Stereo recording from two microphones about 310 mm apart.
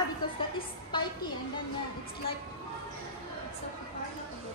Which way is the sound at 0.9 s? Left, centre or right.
Centre.